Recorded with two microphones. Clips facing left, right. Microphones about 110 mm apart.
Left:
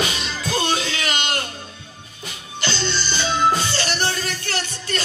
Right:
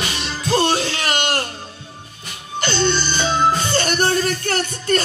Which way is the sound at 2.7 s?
50° right (ahead or behind).